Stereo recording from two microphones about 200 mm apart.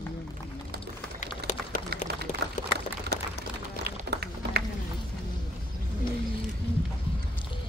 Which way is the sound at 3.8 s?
55° right (ahead or behind).